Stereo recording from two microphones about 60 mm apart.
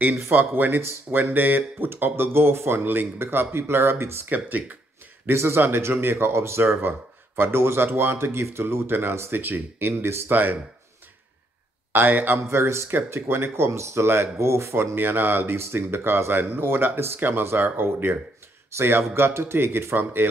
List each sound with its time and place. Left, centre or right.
0.3 s speech: right
5.2 s speech: right
6.7 s speech: right
10.3 s speech: right
11.9 s speech: right
12.4 s speech: right